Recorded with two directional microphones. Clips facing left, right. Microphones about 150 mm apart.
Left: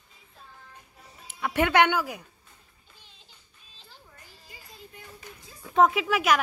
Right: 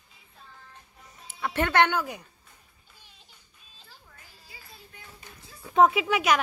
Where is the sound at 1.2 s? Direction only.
10° left (ahead or behind).